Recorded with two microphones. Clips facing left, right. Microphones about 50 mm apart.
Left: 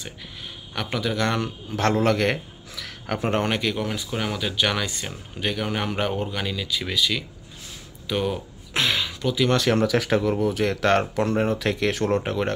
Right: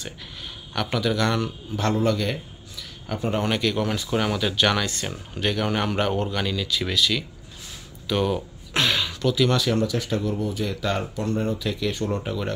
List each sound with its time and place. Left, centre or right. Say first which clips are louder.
0.8 s speech: right 1 dB; left
1.7 s a man's voice: left 2 dB; left
3.4 s speech: right 1 dB; left
3.7 s speech: right 3 dB; centre
8.1 s a sound: right 2 dB; centre
9.8 s speech: left 4 dB; left
12.2 s speech: left 3 dB; left